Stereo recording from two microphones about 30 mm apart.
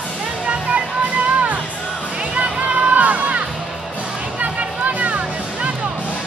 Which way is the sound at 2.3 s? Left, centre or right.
Right.